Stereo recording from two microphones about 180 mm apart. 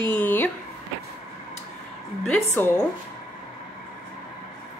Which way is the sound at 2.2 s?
10° left (ahead or behind).